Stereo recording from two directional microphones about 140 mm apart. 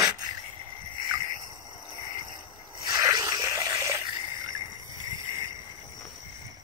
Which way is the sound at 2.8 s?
30° right (ahead or behind).